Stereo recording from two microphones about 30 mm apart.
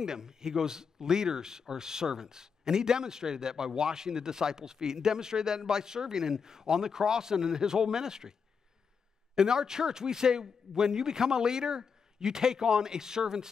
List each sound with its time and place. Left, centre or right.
0.0 s speech: right